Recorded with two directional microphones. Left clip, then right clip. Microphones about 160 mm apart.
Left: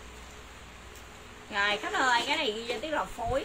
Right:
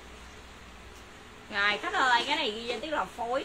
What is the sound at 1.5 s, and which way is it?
A woman's voice, 10° right (ahead or behind).